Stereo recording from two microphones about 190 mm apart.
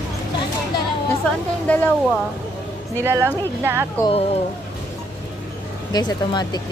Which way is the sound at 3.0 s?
15° right (ahead or behind).